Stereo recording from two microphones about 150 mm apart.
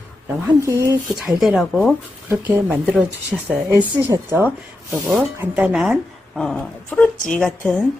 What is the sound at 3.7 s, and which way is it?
Speech, 30° right (ahead or behind).